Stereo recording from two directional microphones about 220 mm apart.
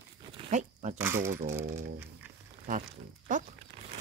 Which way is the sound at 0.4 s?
30° right (ahead or behind).